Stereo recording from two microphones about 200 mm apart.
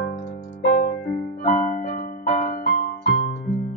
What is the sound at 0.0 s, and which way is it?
Keyboard, 45° left (ahead or behind).